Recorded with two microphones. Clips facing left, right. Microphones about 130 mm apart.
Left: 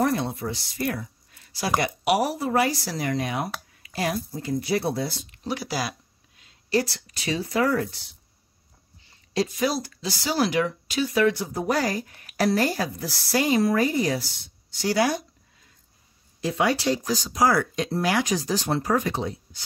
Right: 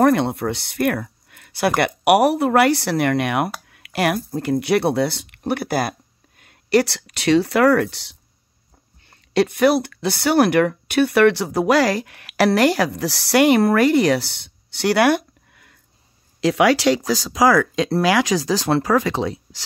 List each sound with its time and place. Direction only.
0.0 s speech: 65° right (ahead or behind)
6.4 s speech: 70° right (ahead or behind)
9.1 s speech: 65° right (ahead or behind)
16.3 s speech: 90° right